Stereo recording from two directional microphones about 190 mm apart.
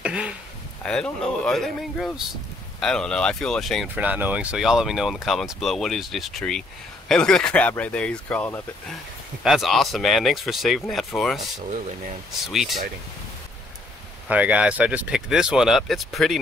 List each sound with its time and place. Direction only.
0.0 s a sound: 5° right (ahead or behind)
0.8 s speech: 5° left (ahead or behind)
9.4 s speech: centre (ahead or behind)
12.4 s speech: centre (ahead or behind)
14.2 s speech: 5° right (ahead or behind)